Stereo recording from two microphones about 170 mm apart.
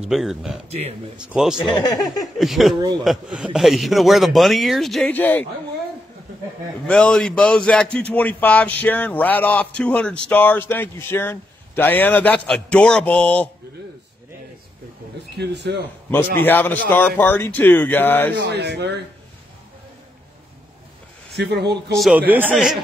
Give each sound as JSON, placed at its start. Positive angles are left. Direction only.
{"t": 0.0, "sound": "speech", "side_deg": 0}
{"t": 0.7, "sound": "speech", "side_deg": -40}
{"t": 1.1, "sound": "speech", "side_deg": -5}
{"t": 1.8, "sound": "speech", "side_deg": 20}
{"t": 2.3, "sound": "speech", "side_deg": 0}
{"t": 6.9, "sound": "speech", "side_deg": 5}
{"t": 15.3, "sound": "speech", "side_deg": -80}
{"t": 16.1, "sound": "speech", "side_deg": 10}
{"t": 18.4, "sound": "speech", "side_deg": -75}
{"t": 21.3, "sound": "speech", "side_deg": -80}
{"t": 21.9, "sound": "a man's voice", "side_deg": -5}